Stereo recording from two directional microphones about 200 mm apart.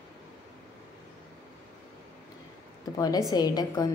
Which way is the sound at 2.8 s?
20° left (ahead or behind).